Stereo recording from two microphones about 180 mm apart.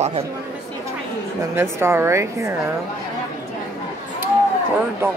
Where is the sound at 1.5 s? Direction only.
15° right (ahead or behind).